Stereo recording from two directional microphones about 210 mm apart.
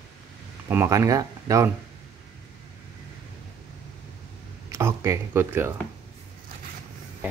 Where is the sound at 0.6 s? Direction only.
10° right (ahead or behind).